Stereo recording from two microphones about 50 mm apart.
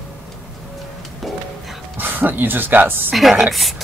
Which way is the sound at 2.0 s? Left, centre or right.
Right.